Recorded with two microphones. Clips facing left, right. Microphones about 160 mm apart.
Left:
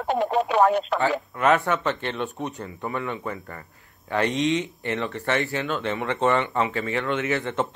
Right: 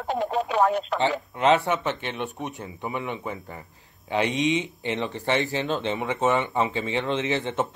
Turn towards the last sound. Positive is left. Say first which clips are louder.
# even
turn(degrees=-25)  # may be behind; listen again after turning